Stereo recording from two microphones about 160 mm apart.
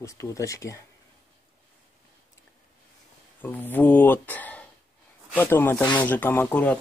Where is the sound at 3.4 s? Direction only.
10° left (ahead or behind).